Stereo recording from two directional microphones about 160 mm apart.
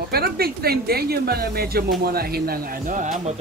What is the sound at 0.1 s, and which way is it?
Speech, 75° right (ahead or behind).